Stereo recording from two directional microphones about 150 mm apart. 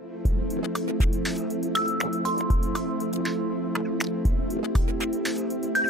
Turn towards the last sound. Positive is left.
turn(degrees=0)  # may be behind; listen again after turning